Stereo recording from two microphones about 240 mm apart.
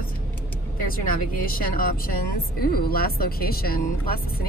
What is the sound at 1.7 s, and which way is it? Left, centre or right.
Speech, left.